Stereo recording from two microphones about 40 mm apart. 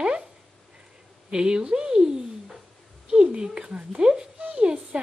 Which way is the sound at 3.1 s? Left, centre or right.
Right.